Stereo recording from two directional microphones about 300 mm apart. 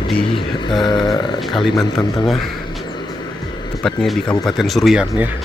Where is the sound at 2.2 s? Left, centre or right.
Centre.